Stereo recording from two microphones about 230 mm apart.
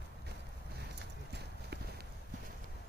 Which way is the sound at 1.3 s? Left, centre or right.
Right.